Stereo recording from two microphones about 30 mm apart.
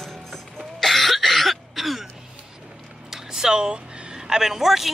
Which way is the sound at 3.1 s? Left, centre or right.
Centre.